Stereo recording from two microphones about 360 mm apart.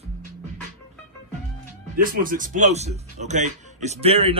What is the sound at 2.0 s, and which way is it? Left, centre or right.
Speech, right.